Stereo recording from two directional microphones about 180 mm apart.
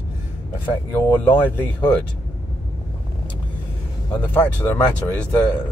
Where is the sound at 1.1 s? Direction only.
10° left (ahead or behind).